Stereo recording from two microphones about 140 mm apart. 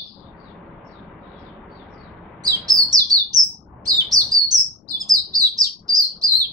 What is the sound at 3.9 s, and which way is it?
Bird, 25° right (ahead or behind).